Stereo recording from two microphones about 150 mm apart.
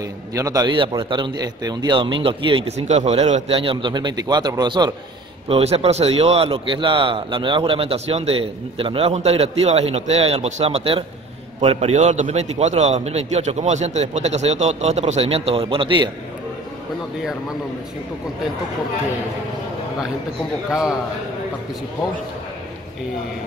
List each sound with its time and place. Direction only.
0.3 s a man's voice: 20° right (ahead or behind)
2.9 s a man's voice: 50° right (ahead or behind); by 4.9 s 30° right (ahead or behind)
5.5 s a man's voice: 45° right (ahead or behind)